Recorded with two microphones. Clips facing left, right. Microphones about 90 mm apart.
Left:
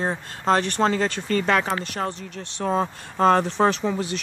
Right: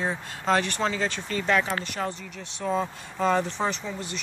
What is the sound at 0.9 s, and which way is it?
Speech, 50° left (ahead or behind).